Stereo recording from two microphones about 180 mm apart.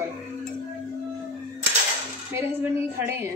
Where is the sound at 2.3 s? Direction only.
10° right (ahead or behind).